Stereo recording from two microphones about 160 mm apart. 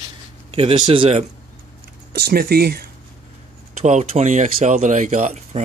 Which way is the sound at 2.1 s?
75° right (ahead or behind).